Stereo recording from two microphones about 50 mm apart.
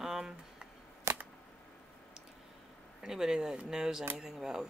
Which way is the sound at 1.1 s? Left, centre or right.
Right.